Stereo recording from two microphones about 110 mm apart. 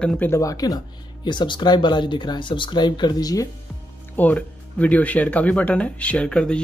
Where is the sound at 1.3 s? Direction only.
45° left (ahead or behind).